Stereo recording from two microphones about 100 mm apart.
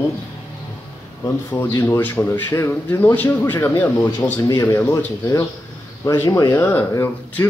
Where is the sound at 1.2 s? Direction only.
20° left (ahead or behind).